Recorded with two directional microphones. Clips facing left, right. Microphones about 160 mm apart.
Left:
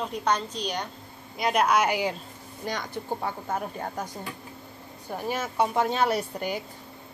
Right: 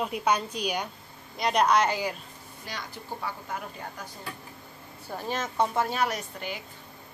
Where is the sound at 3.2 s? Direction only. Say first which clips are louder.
Left 5 dB; 45° left (ahead or behind).